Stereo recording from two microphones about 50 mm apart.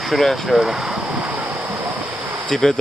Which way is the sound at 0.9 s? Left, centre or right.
Right.